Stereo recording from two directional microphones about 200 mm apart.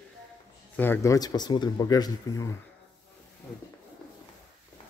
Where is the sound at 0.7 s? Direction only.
10° left (ahead or behind).